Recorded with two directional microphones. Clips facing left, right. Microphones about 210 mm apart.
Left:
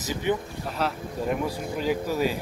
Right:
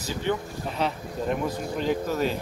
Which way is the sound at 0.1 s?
15° left (ahead or behind).